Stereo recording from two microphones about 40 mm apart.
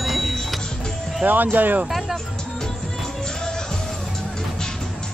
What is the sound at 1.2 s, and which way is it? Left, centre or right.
Speech, right.